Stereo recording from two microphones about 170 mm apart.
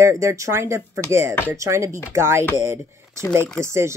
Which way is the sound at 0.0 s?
20° right (ahead or behind).